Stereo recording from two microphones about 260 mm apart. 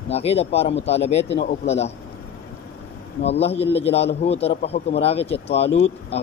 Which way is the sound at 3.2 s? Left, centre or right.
Left.